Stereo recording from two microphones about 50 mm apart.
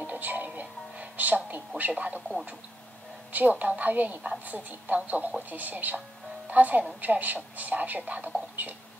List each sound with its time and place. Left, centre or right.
0.0 s music: right
1.8 s speech: right
3.3 s speech: right